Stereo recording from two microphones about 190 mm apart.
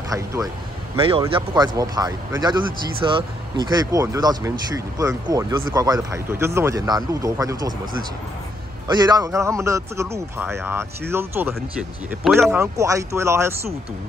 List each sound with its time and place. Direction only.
0.1 s speech: 15° right (ahead or behind)
0.9 s speech: 25° right (ahead or behind)
8.8 s speech: 20° right (ahead or behind)
12.3 s speech: centre (ahead or behind)
12.5 s speech: 15° right (ahead or behind)